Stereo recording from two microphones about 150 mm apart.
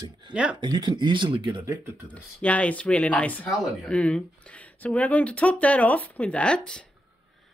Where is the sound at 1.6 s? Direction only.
20° right (ahead or behind).